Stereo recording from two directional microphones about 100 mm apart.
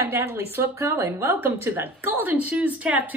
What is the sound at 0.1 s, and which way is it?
Speech, 20° right (ahead or behind).